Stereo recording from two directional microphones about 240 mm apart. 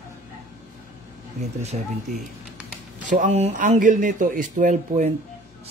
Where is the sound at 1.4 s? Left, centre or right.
Right.